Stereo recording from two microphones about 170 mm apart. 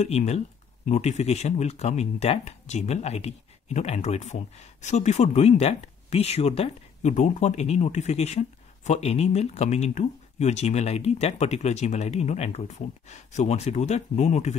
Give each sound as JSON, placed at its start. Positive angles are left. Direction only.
{"t": 0.0, "sound": "speech", "side_deg": 40}